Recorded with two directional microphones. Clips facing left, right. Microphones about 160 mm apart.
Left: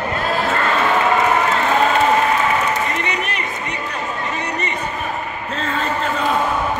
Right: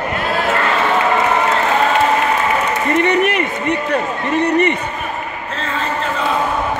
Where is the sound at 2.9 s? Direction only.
60° right (ahead or behind).